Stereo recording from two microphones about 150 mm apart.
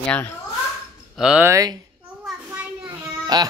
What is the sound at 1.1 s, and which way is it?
Speech, 5° right (ahead or behind).